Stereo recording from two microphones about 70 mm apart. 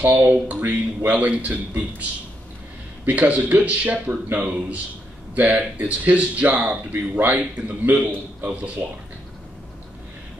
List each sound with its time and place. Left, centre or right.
0.0 s speech: right
3.1 s speech: right